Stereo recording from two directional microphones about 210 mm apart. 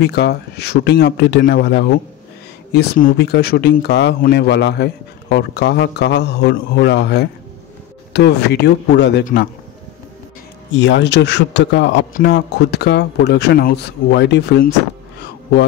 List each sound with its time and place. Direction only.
0.0 s speech: 55° left (ahead or behind)
9.2 s a man's voice: 40° left (ahead or behind)
10.7 s speech: 60° left (ahead or behind)